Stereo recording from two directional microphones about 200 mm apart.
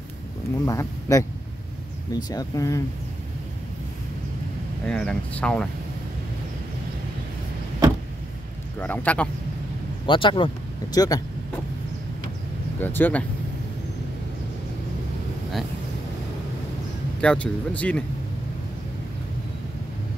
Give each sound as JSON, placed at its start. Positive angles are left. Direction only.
{"t": 0.7, "sound": "speech", "side_deg": 15}
{"t": 4.8, "sound": "speech", "side_deg": 5}
{"t": 8.7, "sound": "speech", "side_deg": 10}
{"t": 10.0, "sound": "speech", "side_deg": 25}
{"t": 12.7, "sound": "speech", "side_deg": 10}
{"t": 17.2, "sound": "speech", "side_deg": 5}